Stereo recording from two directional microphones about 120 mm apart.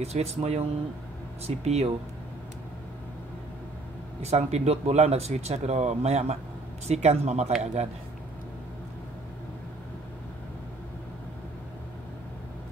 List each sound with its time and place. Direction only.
0.0 s speech: 60° right (ahead or behind)
4.2 s speech: 65° right (ahead or behind)